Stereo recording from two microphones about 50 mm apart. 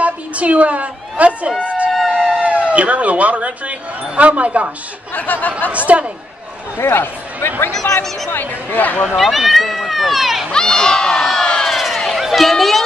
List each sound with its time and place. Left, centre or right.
0.0 s a woman's voice: right
1.9 s a sound: centre
2.4 s speech: right
5.1 s speech: left
5.7 s speech: right
6.8 s speech: left
9.0 s speech: centre
10.5 s speech: centre
11.6 s a sound: centre